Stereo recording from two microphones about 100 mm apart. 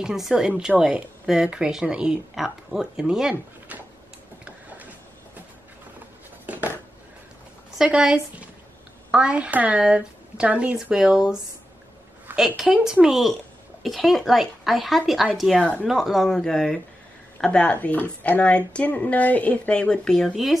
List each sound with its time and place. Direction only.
0.0 s a woman's voice: 5° right (ahead or behind)
4.5 s vehicle: 15° right (ahead or behind)
6.4 s a sound: 15° right (ahead or behind)
7.7 s a woman's voice: 5° right (ahead or behind)
15.6 s speech: 10° left (ahead or behind)
15.9 s speech: centre (ahead or behind)